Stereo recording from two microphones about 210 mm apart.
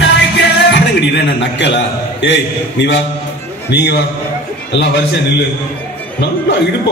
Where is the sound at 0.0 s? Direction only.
55° left (ahead or behind).